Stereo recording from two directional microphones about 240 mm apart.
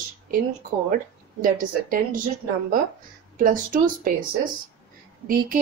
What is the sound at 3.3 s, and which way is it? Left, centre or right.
Speech, right.